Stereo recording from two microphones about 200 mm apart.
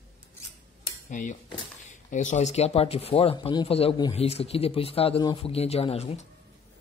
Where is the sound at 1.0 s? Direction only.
40° left (ahead or behind).